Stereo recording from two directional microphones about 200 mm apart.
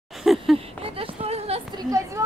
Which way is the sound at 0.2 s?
Centre (ahead or behind).